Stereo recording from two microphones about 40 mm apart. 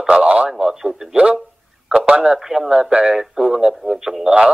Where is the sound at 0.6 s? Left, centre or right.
Centre.